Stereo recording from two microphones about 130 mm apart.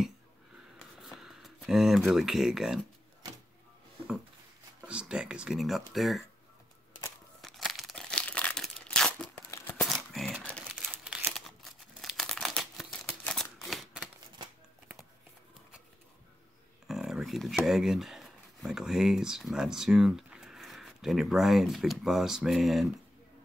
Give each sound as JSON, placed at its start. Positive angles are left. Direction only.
{"t": 1.0, "sound": "speech", "side_deg": 0}
{"t": 4.8, "sound": "speech", "side_deg": -5}
{"t": 7.4, "sound": "crumpling", "side_deg": 0}
{"t": 9.5, "sound": "a sound", "side_deg": 25}
{"t": 10.1, "sound": "a sound", "side_deg": 0}
{"t": 10.8, "sound": "crumpling", "side_deg": 0}
{"t": 13.2, "sound": "a sound", "side_deg": 5}
{"t": 13.7, "sound": "shuffling cards", "side_deg": 0}
{"t": 16.8, "sound": "speech", "side_deg": -5}